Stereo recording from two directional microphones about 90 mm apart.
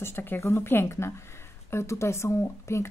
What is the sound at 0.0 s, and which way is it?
A woman's voice, 25° left (ahead or behind).